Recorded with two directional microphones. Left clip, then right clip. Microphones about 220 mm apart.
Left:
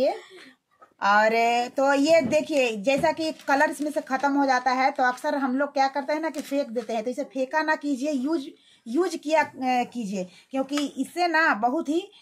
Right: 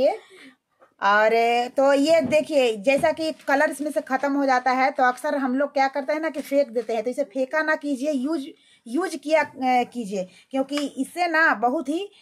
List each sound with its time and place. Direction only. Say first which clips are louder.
0.9 s speech: right 2 dB; 30° right (ahead or behind)